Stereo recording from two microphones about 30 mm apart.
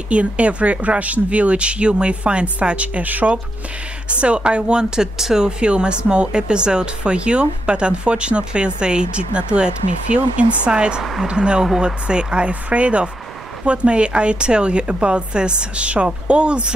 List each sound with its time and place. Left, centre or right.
0.1 s speech: right
4.1 s speech: right
12.6 s speech: right